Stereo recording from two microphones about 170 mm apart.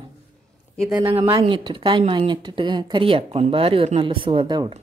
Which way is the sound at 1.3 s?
25° right (ahead or behind).